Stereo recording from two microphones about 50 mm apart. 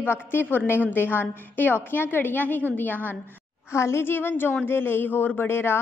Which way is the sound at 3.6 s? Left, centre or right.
Left.